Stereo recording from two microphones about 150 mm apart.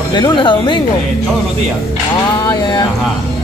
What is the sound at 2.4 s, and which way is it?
Speech, 30° left (ahead or behind).